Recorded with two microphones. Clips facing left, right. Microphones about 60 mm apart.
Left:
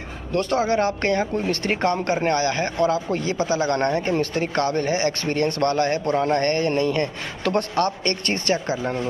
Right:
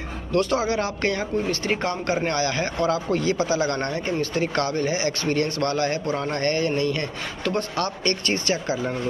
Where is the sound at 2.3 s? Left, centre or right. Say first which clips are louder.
Left 2 dB; left.